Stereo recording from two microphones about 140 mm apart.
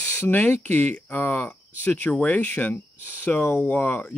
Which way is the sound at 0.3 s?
10° left (ahead or behind).